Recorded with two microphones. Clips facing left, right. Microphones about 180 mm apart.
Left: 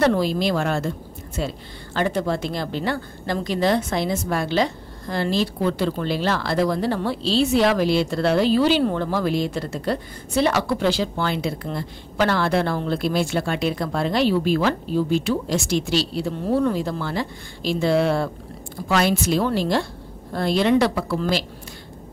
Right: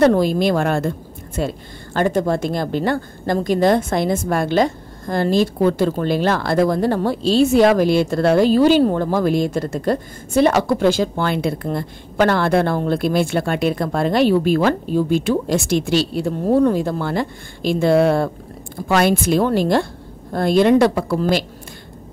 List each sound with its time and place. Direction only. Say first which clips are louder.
0.0 s a woman's voice: right 5 dB; 45° right (ahead or behind)